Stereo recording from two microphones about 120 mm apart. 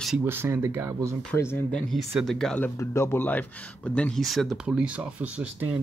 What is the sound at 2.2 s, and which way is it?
Speech, 5° left (ahead or behind).